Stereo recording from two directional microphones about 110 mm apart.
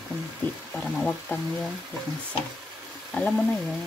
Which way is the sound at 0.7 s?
Centre (ahead or behind).